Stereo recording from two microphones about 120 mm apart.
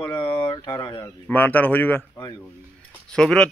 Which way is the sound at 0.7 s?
35° left (ahead or behind).